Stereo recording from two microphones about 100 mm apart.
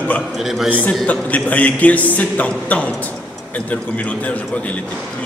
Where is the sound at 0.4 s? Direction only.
Centre (ahead or behind).